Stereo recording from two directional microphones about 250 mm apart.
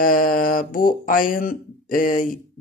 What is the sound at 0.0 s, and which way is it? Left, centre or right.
Speech, left.